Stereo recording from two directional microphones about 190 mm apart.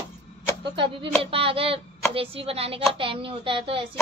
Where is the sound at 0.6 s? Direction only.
25° right (ahead or behind).